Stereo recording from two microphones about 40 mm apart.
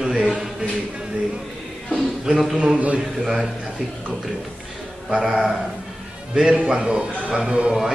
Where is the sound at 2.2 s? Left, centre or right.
Centre.